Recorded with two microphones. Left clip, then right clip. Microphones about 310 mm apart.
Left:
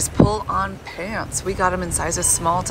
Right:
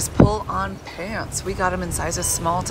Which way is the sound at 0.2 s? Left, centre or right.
Centre.